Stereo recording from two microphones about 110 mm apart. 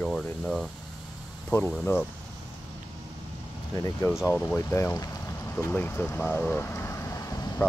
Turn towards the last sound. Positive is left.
turn(degrees=30)  # may be behind; listen again after turning